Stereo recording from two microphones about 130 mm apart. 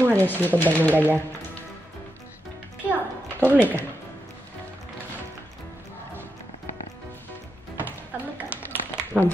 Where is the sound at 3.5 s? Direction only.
15° right (ahead or behind).